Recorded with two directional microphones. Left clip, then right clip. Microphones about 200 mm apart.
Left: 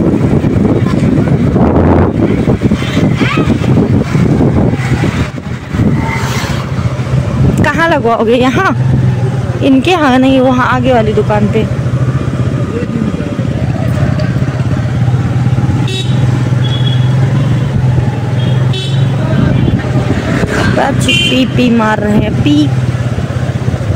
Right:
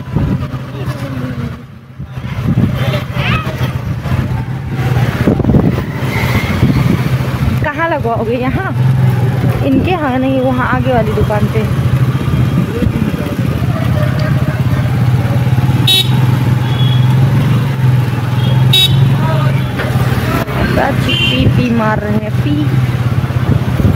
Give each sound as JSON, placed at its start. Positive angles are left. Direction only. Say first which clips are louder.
{"t": 7.6, "sound": "vehicle", "louder": "left 5 dB", "side_deg": 20}
{"t": 9.7, "sound": "speech", "louder": "left 6 dB", "side_deg": 20}
{"t": 21.5, "sound": "speech", "louder": "left 4 dB", "side_deg": 15}